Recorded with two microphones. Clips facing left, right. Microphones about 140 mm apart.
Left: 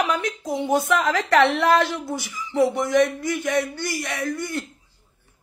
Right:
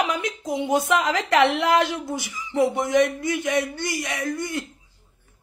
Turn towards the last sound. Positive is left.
turn(degrees=-20)  # may be behind; listen again after turning